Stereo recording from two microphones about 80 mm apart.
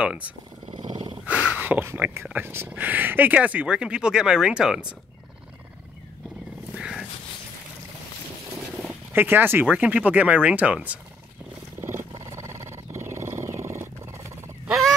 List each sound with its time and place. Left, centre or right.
0.0 s speech: centre
0.7 s a sound: right
1.2 s a sound: centre
2.3 s speech: right; by 4.8 s centre
6.7 s dog: centre
8.7 s speech: right
11.8 s wild animals: right